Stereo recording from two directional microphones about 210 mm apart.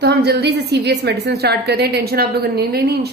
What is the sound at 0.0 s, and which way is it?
A woman's voice, 50° right (ahead or behind).